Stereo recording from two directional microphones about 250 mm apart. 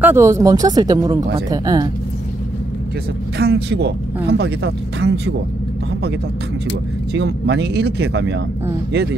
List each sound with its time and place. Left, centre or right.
0.0 s speech: centre
3.3 s speech: right
7.2 s speech: right